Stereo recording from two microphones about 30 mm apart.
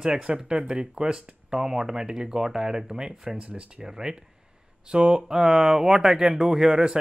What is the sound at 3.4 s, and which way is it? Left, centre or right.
Speech, right.